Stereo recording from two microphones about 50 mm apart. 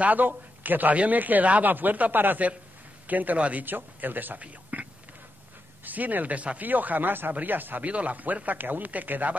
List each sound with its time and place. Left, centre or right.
0.0 s a man's voice: right
3.6 s a man's voice: right
5.9 s a man's voice: right
7.8 s a man's voice: right